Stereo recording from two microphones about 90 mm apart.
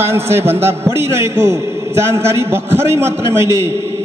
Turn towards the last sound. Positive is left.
turn(degrees=-30)  # may be behind; listen again after turning